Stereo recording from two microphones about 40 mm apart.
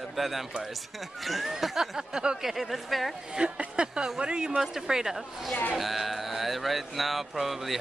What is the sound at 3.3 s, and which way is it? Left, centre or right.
A woman's voice, right.